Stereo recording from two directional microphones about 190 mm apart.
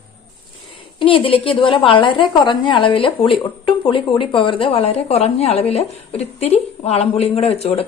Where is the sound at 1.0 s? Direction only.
30° left (ahead or behind).